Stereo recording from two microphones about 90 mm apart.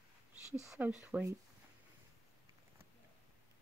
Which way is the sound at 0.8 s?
15° right (ahead or behind).